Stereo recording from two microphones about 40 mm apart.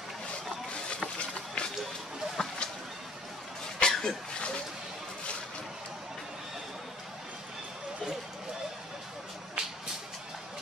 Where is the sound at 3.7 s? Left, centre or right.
Left.